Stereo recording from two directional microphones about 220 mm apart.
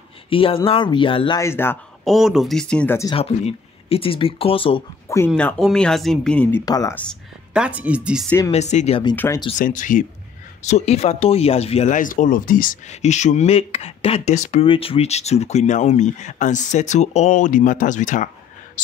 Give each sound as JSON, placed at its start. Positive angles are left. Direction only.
{"t": 0.3, "sound": "speech", "side_deg": 25}
{"t": 2.1, "sound": "speech", "side_deg": 0}
{"t": 3.2, "sound": "speech", "side_deg": 25}
{"t": 5.0, "sound": "a sound", "side_deg": 15}
{"t": 5.3, "sound": "speech", "side_deg": 5}
{"t": 6.6, "sound": "speech", "side_deg": 15}
{"t": 7.5, "sound": "speech", "side_deg": -5}
{"t": 8.5, "sound": "speech", "side_deg": 30}
{"t": 9.1, "sound": "speech", "side_deg": 10}
{"t": 9.6, "sound": "speech", "side_deg": 35}